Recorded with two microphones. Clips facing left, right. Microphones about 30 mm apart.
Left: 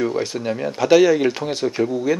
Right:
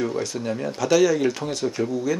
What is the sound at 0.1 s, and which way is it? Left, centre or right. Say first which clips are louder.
Speech: left 3 dB; left.